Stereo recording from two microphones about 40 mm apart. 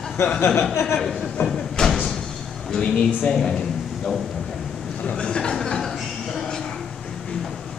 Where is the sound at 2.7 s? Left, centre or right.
Centre.